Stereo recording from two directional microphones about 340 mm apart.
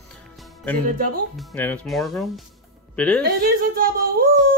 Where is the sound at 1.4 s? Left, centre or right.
Centre.